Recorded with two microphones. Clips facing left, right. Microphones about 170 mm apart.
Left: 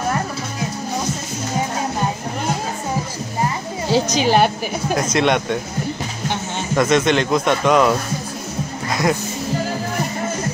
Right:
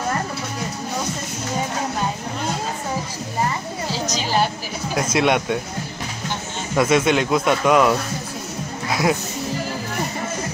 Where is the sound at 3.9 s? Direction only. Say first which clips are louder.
Left 8 dB; 65° left (ahead or behind).